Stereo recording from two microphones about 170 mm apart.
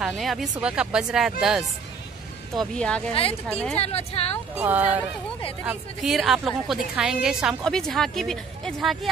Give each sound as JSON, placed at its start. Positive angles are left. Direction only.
{"t": 0.0, "sound": "a woman's voice", "side_deg": 0}
{"t": 2.5, "sound": "a woman's voice", "side_deg": 5}
{"t": 3.7, "sound": "a woman's voice", "side_deg": 35}
{"t": 4.6, "sound": "a woman's voice", "side_deg": -10}